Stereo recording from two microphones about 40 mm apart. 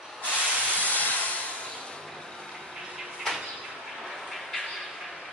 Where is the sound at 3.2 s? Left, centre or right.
Centre.